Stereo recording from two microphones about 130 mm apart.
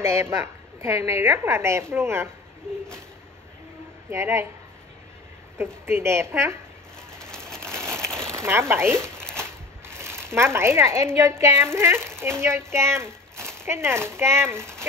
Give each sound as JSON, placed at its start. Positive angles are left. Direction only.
{"t": 0.0, "sound": "a woman's voice", "side_deg": -20}
{"t": 4.1, "sound": "a woman's voice", "side_deg": -20}
{"t": 5.6, "sound": "a woman's voice", "side_deg": -20}
{"t": 7.1, "sound": "vehicle", "side_deg": 5}
{"t": 7.9, "sound": "a sound", "side_deg": 5}
{"t": 8.3, "sound": "a woman's voice", "side_deg": -20}
{"t": 13.4, "sound": "a sound", "side_deg": 5}
{"t": 13.7, "sound": "a woman's voice", "side_deg": -20}